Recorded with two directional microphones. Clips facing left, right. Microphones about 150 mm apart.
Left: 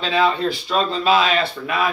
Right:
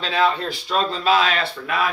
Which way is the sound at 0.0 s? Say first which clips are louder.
Left 2 dB; centre (ahead or behind).